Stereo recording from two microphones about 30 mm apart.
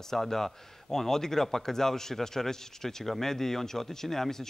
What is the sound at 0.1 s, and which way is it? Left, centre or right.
Speech, centre.